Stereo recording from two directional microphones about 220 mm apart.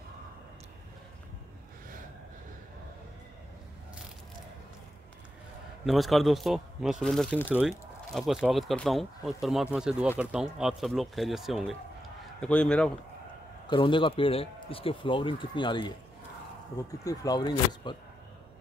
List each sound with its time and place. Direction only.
5.9 s speech: centre (ahead or behind)
13.7 s a man's voice: 20° left (ahead or behind)
17.0 s speech: 15° left (ahead or behind)